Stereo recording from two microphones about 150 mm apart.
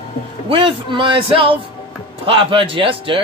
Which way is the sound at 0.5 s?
35° right (ahead or behind).